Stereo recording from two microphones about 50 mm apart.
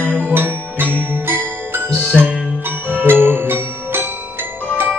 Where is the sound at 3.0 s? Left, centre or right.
Right.